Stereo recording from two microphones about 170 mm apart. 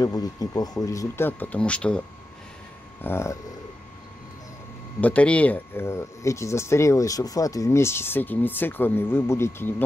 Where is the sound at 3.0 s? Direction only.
15° left (ahead or behind).